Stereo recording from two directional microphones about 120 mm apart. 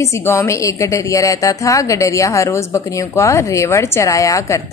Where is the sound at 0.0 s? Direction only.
25° left (ahead or behind).